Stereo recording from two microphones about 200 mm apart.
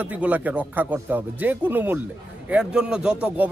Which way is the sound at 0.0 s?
10° right (ahead or behind).